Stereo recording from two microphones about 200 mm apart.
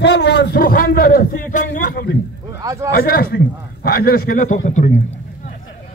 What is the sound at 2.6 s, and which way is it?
Speech, 15° right (ahead or behind).